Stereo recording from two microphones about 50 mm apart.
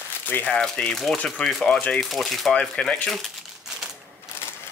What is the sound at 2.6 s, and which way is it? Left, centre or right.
Speech, centre.